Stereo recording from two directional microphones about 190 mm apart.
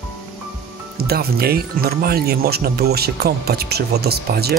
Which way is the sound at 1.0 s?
55° right (ahead or behind).